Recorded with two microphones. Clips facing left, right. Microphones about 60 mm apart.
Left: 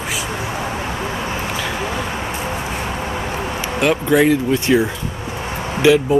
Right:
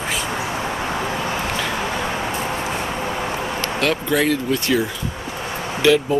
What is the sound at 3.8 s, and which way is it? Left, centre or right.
Speech, centre.